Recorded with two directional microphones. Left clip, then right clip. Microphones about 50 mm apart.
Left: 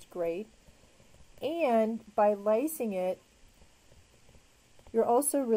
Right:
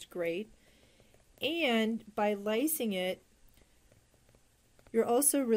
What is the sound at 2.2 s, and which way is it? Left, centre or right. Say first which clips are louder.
Speech: left 5 dB; right.